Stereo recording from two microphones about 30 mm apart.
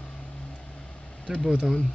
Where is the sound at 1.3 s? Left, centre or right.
Centre.